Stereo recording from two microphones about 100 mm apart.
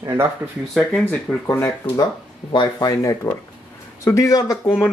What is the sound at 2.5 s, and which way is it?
Speech, 45° left (ahead or behind).